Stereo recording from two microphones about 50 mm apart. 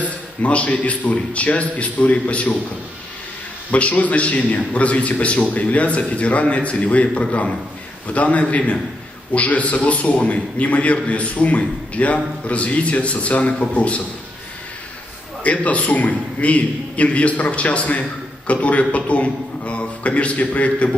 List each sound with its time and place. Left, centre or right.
0.4 s a man's voice: left
3.7 s a man's voice: left
15.4 s a man's voice: left